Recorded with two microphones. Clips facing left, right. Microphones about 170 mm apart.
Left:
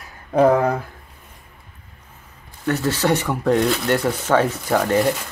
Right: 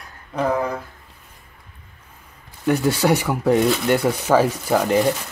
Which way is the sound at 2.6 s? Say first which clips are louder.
Right 2 dB; 10° right (ahead or behind).